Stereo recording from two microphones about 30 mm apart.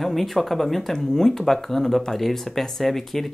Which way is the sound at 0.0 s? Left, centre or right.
Centre.